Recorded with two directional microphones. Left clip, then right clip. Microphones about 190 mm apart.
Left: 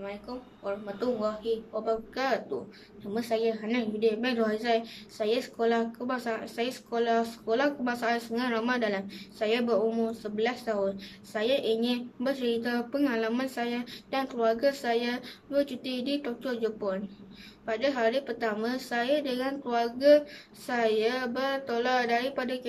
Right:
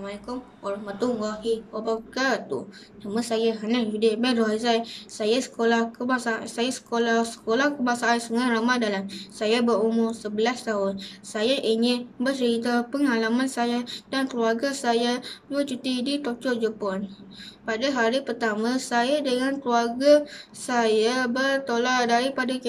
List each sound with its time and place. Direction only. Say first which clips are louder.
0.0 s a woman's voice: right 4 dB; 5° left (ahead or behind)